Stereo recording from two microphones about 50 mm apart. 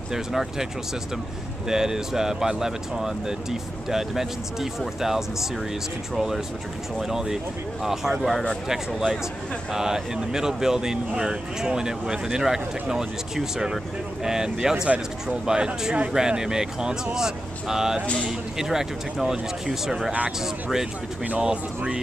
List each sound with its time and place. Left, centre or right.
0.1 s speech: centre
1.7 s speech: centre
21.4 s speech: centre